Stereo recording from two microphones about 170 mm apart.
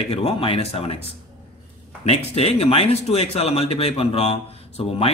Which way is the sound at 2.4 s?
35° left (ahead or behind).